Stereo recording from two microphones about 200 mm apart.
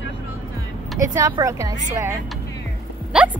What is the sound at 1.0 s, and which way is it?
Speech, 15° right (ahead or behind).